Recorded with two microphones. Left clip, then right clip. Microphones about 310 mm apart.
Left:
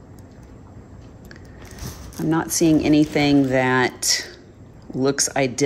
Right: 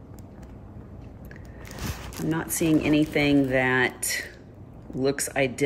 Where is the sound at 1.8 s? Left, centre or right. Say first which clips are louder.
Right 1 dB; right.